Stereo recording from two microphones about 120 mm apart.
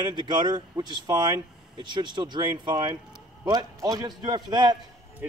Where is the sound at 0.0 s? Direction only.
40° right (ahead or behind).